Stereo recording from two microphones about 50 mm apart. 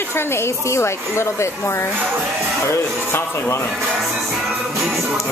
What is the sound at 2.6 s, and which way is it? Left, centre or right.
Speech, left.